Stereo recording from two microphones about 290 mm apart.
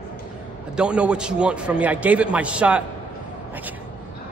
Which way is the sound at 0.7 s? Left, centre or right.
Centre.